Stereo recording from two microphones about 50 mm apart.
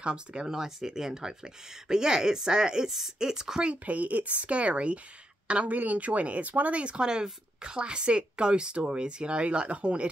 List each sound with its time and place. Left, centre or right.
0.0 s speech: centre
3.8 s speech: right